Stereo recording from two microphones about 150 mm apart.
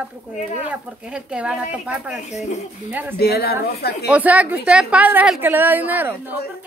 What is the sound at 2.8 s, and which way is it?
Speech, 15° right (ahead or behind).